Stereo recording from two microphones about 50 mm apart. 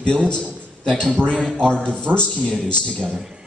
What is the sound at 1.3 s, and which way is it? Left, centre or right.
A man's voice, centre.